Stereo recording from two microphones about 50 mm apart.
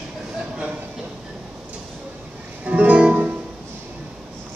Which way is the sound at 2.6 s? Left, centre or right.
Right.